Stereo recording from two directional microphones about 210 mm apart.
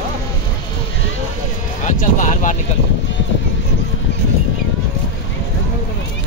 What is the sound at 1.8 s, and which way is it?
Music, 35° left (ahead or behind).